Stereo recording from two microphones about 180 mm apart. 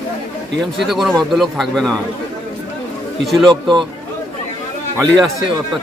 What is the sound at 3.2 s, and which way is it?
Speech, centre (ahead or behind).